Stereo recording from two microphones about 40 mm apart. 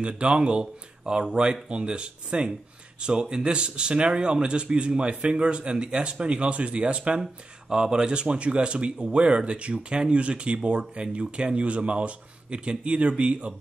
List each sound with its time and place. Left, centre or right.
0.0 s speech: right
7.7 s speech: centre